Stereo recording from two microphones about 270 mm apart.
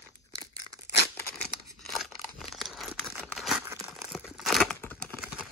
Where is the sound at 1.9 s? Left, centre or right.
Centre.